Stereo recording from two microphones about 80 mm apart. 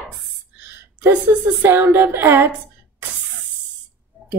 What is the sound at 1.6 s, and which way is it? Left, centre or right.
Speech, right.